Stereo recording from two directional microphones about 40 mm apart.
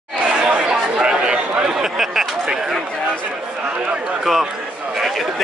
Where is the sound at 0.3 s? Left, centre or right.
Right.